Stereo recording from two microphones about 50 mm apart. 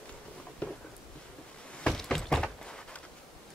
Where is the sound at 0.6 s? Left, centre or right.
Left.